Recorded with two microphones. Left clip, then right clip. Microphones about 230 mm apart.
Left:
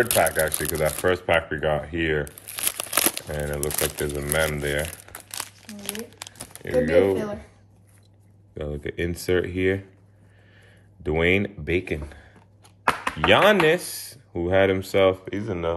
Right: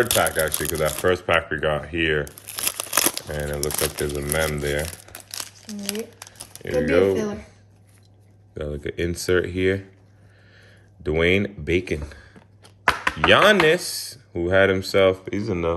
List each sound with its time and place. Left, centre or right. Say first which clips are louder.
0.2 s speech: even; centre
2.5 s speech: right 2 dB; centre
5.3 s crumpling: right 2 dB; left
6.6 s speech: even; centre
8.5 s speech: right 2 dB; centre
11.1 s speech: right 1 dB; centre
13.3 s speech: right 2 dB; centre
15.2 s speech: right 3 dB; centre